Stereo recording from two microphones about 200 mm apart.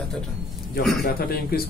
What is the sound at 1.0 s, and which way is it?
Speech, 50° left (ahead or behind).